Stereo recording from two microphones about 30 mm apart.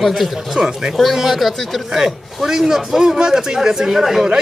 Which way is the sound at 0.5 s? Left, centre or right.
Right.